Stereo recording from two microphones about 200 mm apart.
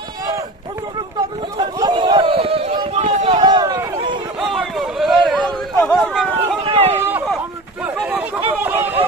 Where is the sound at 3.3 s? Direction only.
20° right (ahead or behind).